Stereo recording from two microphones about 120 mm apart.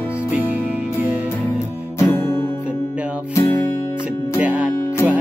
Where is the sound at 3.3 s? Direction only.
25° left (ahead or behind).